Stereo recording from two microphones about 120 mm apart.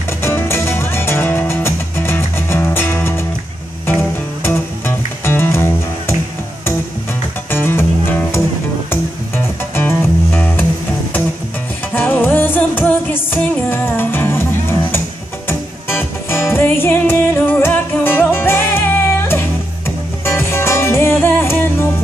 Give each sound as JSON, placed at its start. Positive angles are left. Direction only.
{"t": 0.2, "sound": "music", "side_deg": 20}
{"t": 7.5, "sound": "music", "side_deg": 20}
{"t": 9.8, "sound": "music", "side_deg": 15}
{"t": 11.9, "sound": "music", "side_deg": 15}